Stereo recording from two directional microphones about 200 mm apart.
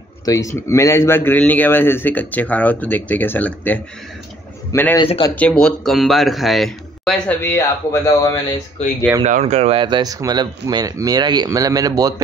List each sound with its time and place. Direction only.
0.2 s a man's voice: 15° left (ahead or behind)
8.8 s speech: 30° left (ahead or behind)
9.2 s speech: 35° right (ahead or behind); by 12.1 s 20° right (ahead or behind)